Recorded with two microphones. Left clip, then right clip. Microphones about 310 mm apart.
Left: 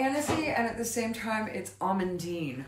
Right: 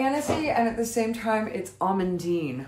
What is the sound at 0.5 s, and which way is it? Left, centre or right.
A woman's voice, centre.